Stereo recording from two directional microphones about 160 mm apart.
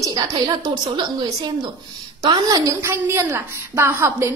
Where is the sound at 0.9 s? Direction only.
30° right (ahead or behind).